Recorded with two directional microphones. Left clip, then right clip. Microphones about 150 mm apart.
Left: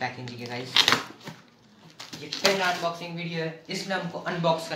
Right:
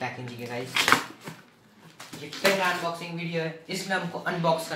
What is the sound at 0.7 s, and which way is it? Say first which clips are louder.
Speech: left 1 dB; 10° left (ahead or behind).